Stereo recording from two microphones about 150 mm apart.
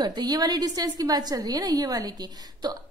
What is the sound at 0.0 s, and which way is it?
A woman's voice, 25° right (ahead or behind).